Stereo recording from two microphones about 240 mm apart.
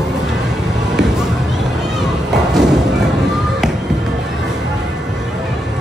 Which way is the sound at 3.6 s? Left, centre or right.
Centre.